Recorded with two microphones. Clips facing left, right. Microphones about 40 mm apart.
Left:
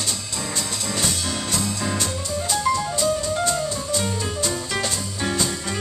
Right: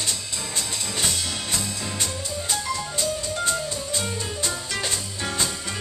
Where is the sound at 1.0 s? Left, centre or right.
Centre.